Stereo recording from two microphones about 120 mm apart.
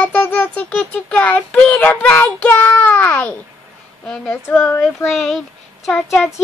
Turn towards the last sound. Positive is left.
turn(degrees=0)  # may be behind; listen again after turning